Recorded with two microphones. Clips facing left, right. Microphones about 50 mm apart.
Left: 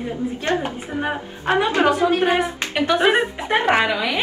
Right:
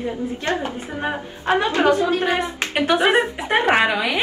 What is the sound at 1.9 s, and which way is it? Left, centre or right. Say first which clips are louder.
Speech: left 1 dB; left.